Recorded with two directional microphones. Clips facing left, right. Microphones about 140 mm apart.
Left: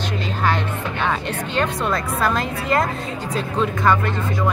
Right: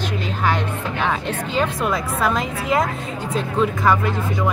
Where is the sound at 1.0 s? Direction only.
5° right (ahead or behind).